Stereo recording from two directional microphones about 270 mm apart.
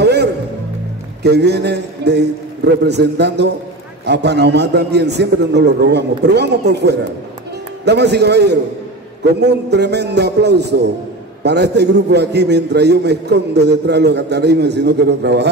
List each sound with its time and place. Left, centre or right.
0.0 s music: right
1.2 s a man's voice: right